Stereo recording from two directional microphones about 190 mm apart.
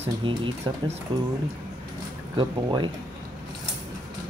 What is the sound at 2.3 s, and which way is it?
Speech, 25° right (ahead or behind).